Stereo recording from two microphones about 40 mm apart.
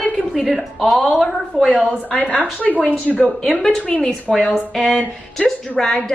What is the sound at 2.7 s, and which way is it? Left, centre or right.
Speech, right.